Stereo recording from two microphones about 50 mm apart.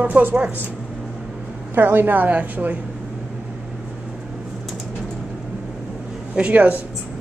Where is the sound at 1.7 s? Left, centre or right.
Right.